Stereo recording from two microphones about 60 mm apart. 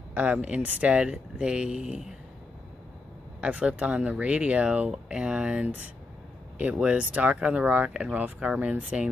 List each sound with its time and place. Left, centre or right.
0.1 s speech: right
3.3 s speech: right